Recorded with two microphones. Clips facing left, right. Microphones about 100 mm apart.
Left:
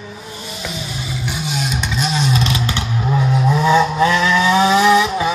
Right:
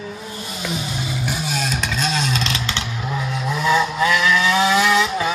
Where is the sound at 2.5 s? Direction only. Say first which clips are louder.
Left 5 dB; 20° left (ahead or behind).